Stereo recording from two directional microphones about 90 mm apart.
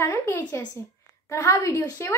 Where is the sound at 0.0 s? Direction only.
30° left (ahead or behind).